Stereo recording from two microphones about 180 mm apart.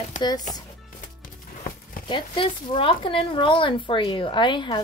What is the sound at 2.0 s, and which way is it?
Speech, 25° left (ahead or behind).